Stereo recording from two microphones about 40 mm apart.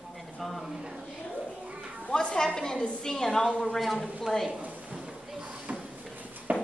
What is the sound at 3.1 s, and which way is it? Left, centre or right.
Speech, centre.